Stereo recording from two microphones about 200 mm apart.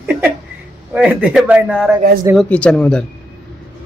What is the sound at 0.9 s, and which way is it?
Speech, 5° right (ahead or behind).